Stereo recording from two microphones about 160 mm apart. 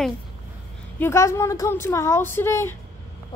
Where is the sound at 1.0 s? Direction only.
15° left (ahead or behind).